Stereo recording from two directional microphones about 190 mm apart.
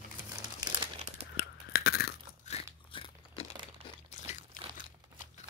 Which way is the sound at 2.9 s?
30° left (ahead or behind).